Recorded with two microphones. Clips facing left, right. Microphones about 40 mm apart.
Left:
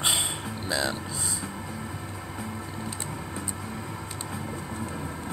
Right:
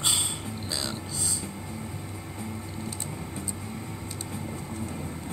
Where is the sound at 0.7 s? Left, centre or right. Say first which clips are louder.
Left 7 dB; centre.